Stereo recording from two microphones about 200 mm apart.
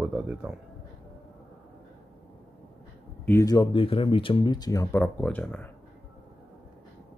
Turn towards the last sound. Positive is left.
turn(degrees=5)  # may be behind; listen again after turning